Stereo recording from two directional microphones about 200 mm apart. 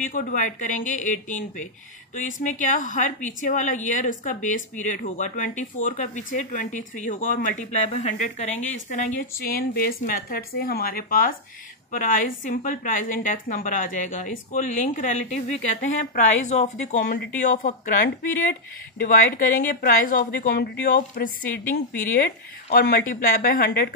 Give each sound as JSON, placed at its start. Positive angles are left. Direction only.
{"t": 0.0, "sound": "speech", "side_deg": 40}
{"t": 18.0, "sound": "speech", "side_deg": 55}